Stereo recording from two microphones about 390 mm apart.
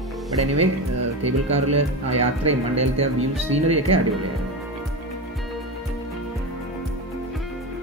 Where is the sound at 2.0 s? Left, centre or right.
Centre.